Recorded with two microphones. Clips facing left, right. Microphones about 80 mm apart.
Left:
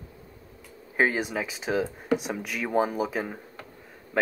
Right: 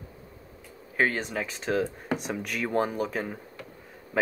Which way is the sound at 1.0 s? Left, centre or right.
Centre.